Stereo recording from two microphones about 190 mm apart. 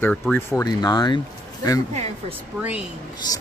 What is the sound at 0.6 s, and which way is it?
Speech, 20° left (ahead or behind).